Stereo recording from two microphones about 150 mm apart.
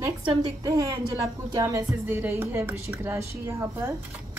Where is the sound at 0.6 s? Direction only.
20° right (ahead or behind).